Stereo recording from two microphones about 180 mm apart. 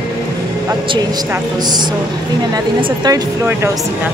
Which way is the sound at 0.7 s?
20° right (ahead or behind).